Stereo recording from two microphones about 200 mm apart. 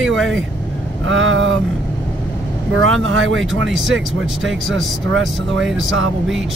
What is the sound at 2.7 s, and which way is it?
Speech, 85° right.